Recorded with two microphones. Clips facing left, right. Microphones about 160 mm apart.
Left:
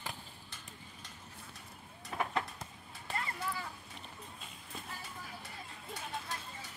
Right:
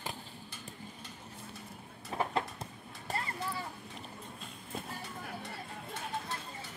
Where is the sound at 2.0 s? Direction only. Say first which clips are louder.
Right 2 dB; 30° right (ahead or behind).